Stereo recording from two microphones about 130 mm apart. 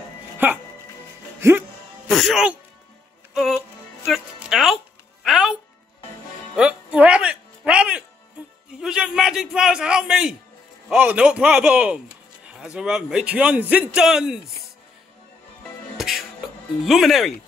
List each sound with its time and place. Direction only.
0.4 s a man's voice: 15° right (ahead or behind)
2.0 s speech: centre (ahead or behind)
3.3 s music: 5° right (ahead or behind)
8.7 s a man's voice: 5° right (ahead or behind)
16.0 s music: centre (ahead or behind)
16.8 s a man's voice: centre (ahead or behind)